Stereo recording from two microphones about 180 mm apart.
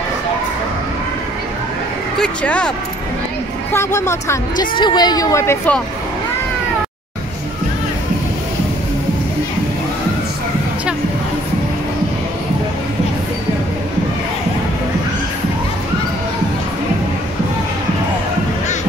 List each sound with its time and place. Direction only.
2.1 s speech: 5° left (ahead or behind)
3.7 s speech: 15° left (ahead or behind)